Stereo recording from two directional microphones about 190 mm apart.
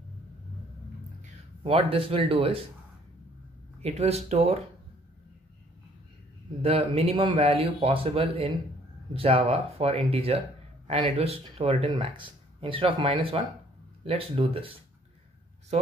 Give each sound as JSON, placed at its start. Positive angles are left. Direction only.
{"t": 1.2, "sound": "speech", "side_deg": -30}
{"t": 3.8, "sound": "speech", "side_deg": -35}
{"t": 6.6, "sound": "speech", "side_deg": -30}